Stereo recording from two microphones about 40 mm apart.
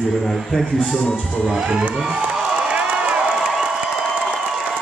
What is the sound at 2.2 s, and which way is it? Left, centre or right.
Crowd, right.